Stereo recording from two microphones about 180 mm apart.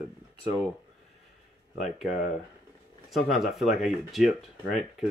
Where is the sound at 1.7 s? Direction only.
Centre (ahead or behind).